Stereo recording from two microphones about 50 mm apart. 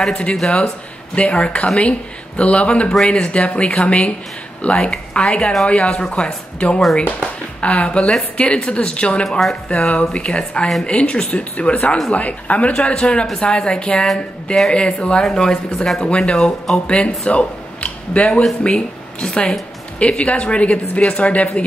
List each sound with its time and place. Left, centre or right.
0.0 s speech: left
14.0 s speech: centre
14.7 s speech: left
17.7 s a sound: left
18.6 s speech: left